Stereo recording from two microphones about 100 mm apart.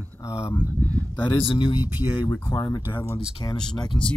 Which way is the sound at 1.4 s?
55° left (ahead or behind).